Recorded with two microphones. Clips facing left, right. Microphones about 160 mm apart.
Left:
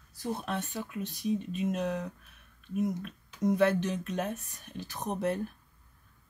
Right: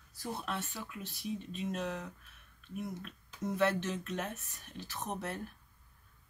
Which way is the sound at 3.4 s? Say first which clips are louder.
Left 6 dB; 15° left (ahead or behind).